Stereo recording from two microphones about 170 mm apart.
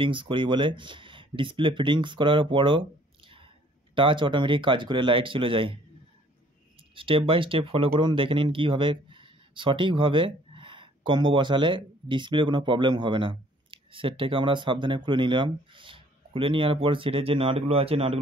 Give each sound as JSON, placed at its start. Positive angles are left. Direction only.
{"t": 0.0, "sound": "speech", "side_deg": -30}
{"t": 7.0, "sound": "speech", "side_deg": -30}